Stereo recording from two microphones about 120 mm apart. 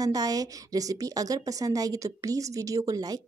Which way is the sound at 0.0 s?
30° right (ahead or behind).